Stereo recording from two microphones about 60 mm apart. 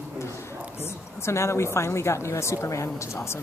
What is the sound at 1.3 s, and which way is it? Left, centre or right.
A woman's voice, left.